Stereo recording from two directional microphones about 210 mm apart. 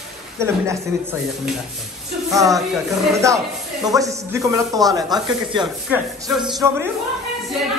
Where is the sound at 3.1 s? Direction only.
15° right (ahead or behind).